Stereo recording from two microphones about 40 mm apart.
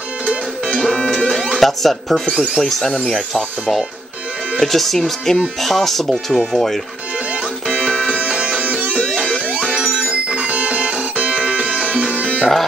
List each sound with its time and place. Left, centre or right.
0.7 s music: centre
1.6 s speech: centre
3.0 s speech: left
4.6 s speech: centre
7.7 s music: right
8.1 s music: right
8.9 s music: right
9.5 s music: right